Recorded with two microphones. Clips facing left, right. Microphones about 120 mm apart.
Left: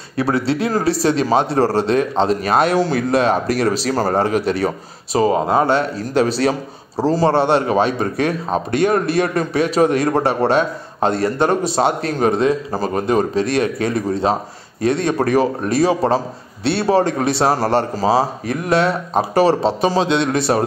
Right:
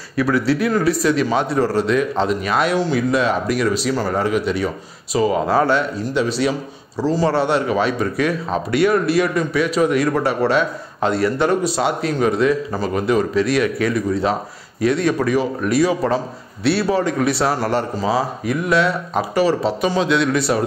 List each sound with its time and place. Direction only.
0.1 s a man's voice: 30° left (ahead or behind)
5.5 s a man's voice: 25° left (ahead or behind)
6.1 s a man's voice: 40° left (ahead or behind)
7.2 s a man's voice: 25° left (ahead or behind)
20.5 s speech: 45° left (ahead or behind)